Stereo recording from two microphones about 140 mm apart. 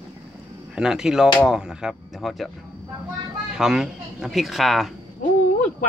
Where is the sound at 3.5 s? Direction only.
5° right (ahead or behind).